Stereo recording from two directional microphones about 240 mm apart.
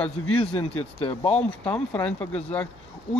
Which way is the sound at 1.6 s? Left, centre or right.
Centre.